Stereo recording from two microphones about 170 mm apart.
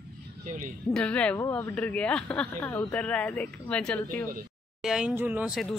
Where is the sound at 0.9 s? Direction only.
5° left (ahead or behind).